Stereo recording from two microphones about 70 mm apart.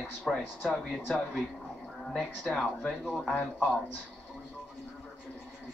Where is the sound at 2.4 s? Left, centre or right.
Centre.